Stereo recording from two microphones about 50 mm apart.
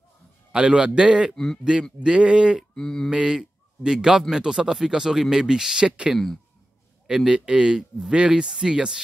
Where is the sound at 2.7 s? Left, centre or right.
Centre.